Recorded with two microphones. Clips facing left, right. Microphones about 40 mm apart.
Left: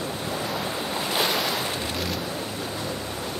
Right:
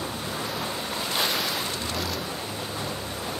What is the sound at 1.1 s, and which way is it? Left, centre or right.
Waves, centre.